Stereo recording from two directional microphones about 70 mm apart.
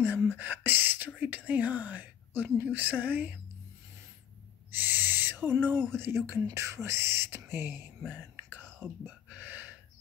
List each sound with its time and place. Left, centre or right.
0.0 s speech: right
1.2 s whispering: right
4.6 s owl: right
6.5 s speech: right
8.6 s whispering: centre
9.3 s a sound: right